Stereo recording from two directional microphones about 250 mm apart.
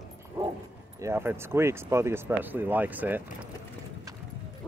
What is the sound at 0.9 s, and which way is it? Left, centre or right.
Speech, centre.